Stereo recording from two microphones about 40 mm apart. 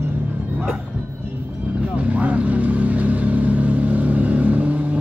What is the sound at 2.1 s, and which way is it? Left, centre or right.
Vehicle, right.